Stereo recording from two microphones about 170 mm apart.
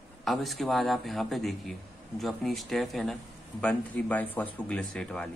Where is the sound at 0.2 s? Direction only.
Centre (ahead or behind).